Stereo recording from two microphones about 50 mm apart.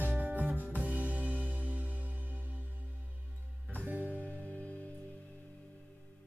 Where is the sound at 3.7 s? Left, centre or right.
Right.